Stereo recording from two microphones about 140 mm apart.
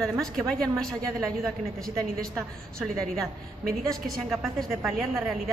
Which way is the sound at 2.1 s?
5° left (ahead or behind).